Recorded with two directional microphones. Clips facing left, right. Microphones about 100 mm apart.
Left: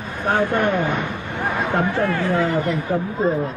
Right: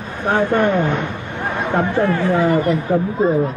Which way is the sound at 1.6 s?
Centre (ahead or behind).